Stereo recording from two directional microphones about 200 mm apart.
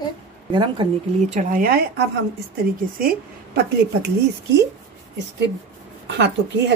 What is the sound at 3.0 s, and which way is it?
Speech, 45° right (ahead or behind).